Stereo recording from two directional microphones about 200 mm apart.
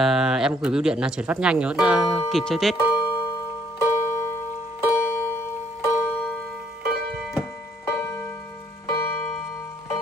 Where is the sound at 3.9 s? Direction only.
15° left (ahead or behind); by 7.5 s centre (ahead or behind).